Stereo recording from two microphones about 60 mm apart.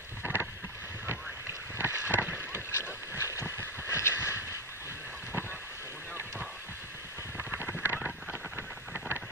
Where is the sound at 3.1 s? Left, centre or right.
Left.